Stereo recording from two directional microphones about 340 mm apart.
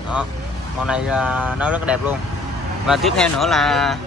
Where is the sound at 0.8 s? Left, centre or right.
Centre.